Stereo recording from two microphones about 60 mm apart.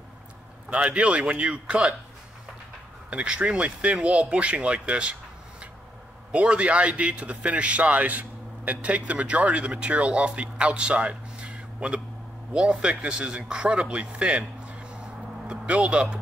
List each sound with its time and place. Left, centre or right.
0.7 s speech: right
3.1 s a man's voice: right
6.3 s a man's voice: centre
15.4 s a sound: centre
15.9 s speech: centre